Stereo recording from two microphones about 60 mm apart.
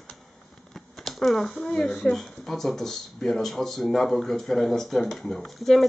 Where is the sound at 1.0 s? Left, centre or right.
Centre.